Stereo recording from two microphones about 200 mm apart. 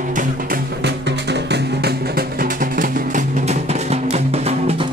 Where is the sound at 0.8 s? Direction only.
60° right (ahead or behind); by 4.9 s 30° right (ahead or behind).